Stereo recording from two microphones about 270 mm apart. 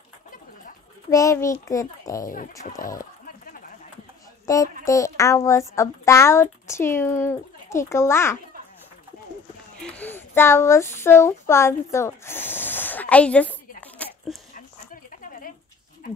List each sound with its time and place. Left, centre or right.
1.1 s speech: centre
2.6 s speech: left
4.5 s speech: centre
9.8 s a woman's voice: centre